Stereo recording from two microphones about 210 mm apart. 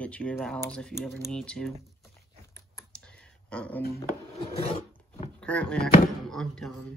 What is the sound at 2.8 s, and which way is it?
Clicking, 5° left (ahead or behind).